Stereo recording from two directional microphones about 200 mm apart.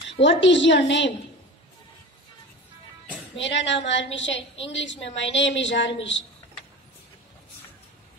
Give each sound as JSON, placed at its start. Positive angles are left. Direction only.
{"t": 0.1, "sound": "a woman's voice", "side_deg": 65}
{"t": 3.3, "sound": "a woman's voice", "side_deg": 65}